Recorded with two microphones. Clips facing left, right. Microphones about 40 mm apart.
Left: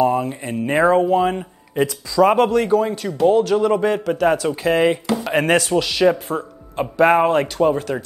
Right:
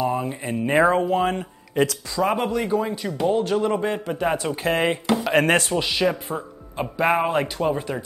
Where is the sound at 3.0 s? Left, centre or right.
Centre.